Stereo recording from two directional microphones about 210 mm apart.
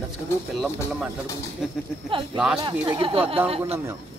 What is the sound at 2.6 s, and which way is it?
Speech, 25° right (ahead or behind).